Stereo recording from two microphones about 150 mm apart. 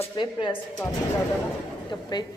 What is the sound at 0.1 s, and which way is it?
Speech, 30° left (ahead or behind).